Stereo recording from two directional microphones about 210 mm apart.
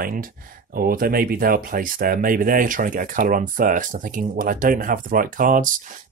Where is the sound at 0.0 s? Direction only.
40° right (ahead or behind).